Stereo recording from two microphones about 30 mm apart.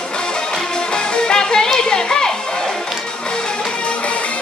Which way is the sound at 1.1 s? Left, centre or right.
Left.